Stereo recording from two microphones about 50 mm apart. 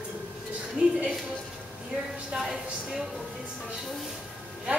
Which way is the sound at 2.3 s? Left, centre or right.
Centre.